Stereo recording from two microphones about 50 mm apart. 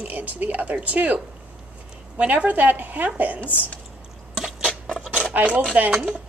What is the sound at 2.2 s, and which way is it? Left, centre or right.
A woman's voice, right.